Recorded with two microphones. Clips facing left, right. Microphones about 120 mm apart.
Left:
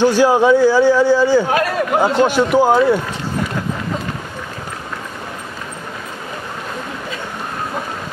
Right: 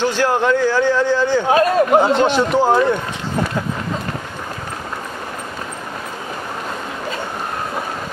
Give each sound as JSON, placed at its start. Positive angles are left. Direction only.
{"t": 0.0, "sound": "a man's voice", "side_deg": 10}
{"t": 1.5, "sound": "a man's voice", "side_deg": -25}
{"t": 2.1, "sound": "a man's voice", "side_deg": 10}